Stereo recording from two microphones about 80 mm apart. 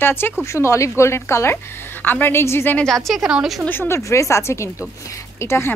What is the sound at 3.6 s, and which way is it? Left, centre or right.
A woman's voice, left.